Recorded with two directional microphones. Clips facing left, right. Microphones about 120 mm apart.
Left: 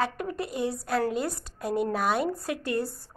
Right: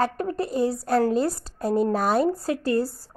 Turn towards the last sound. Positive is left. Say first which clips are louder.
# right 6 dB
turn(degrees=-35)  # may be behind; listen again after turning